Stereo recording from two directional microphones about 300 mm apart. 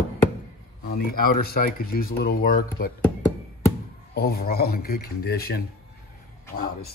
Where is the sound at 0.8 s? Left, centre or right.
Left.